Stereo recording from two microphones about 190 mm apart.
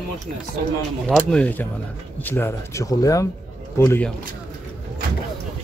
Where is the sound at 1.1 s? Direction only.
5° left (ahead or behind).